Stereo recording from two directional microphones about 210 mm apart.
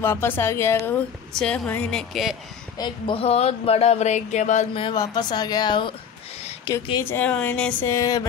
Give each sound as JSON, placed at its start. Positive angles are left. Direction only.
{"t": 0.0, "sound": "a woman's voice", "side_deg": 10}
{"t": 2.8, "sound": "speech", "side_deg": 25}